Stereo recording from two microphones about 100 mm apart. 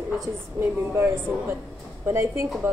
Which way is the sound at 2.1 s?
25° right (ahead or behind).